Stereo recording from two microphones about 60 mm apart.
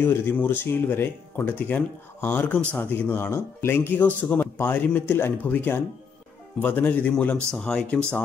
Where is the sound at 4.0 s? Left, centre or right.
Left.